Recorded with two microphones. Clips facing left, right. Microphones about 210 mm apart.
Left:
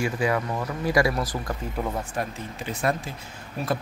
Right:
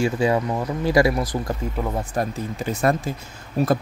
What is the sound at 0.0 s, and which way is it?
Speech, 25° right (ahead or behind).